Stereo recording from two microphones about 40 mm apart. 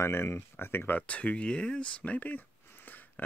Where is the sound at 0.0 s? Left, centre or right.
Left.